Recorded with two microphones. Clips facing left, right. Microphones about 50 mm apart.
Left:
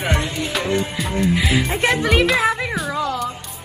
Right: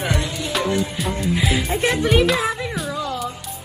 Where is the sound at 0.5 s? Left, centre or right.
Centre.